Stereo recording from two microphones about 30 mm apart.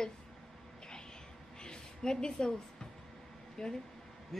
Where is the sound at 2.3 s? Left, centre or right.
Left.